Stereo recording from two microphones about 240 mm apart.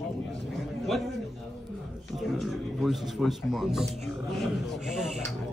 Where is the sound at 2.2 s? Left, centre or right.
Centre.